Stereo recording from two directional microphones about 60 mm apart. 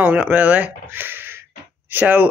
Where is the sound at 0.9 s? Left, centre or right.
Right.